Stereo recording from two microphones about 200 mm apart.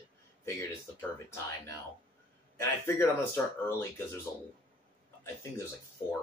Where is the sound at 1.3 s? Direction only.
15° left (ahead or behind).